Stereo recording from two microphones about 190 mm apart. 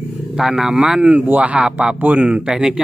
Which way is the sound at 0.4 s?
5° right (ahead or behind).